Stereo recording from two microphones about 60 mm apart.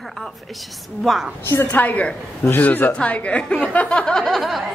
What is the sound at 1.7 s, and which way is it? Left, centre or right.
Speech, left.